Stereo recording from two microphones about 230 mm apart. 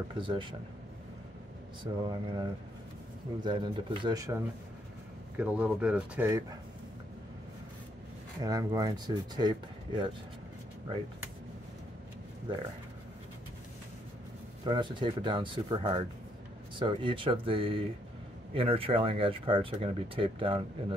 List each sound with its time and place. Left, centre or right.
0.1 s speech: right
1.8 s speech: centre
5.4 s speech: centre
8.4 s speech: centre
14.6 s speech: centre